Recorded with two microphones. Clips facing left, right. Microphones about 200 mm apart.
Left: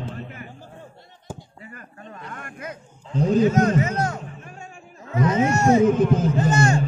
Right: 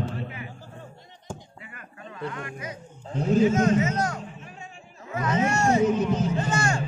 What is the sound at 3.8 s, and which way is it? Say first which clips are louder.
Music: left 1 dB; 30° left (ahead or behind).